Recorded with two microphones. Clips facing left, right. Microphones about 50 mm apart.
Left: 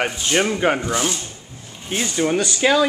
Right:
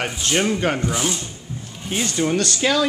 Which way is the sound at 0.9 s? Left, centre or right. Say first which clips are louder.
Left 2 dB; centre.